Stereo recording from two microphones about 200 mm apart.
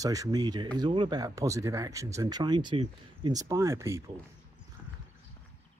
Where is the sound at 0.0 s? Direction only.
15° right (ahead or behind).